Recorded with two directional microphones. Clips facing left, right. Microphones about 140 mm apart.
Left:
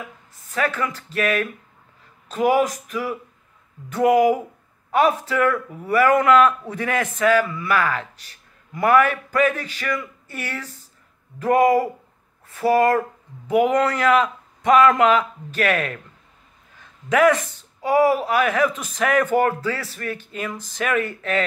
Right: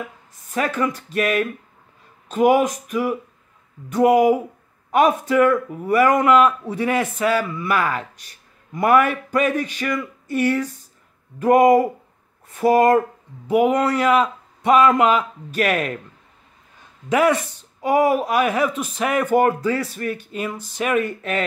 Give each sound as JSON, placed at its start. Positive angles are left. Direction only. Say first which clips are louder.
{"t": 0.5, "sound": "speech", "louder": "right 2 dB", "side_deg": -20}
{"t": 17.1, "sound": "speech", "louder": "left 1 dB", "side_deg": -15}